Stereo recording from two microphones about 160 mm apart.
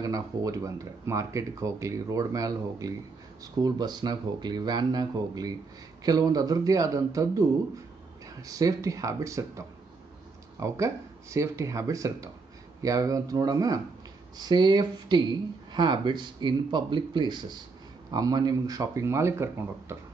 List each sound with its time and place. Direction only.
0.0 s speech: 20° right (ahead or behind)